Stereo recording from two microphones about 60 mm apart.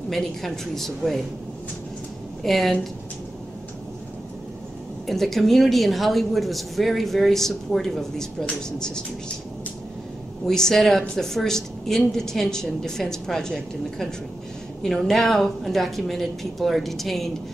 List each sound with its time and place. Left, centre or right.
0.1 s speech: centre
2.4 s speech: centre
5.0 s speech: centre
10.4 s a woman's voice: centre